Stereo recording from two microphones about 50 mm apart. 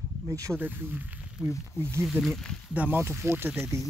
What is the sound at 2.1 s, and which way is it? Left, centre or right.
Speech, centre.